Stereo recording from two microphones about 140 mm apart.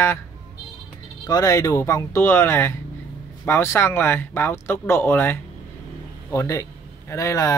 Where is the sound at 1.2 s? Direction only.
25° left (ahead or behind).